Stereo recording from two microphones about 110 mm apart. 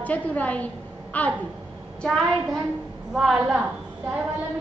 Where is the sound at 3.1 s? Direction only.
5° right (ahead or behind).